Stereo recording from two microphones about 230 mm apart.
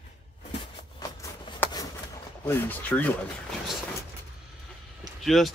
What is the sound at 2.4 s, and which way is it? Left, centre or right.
Speech, centre.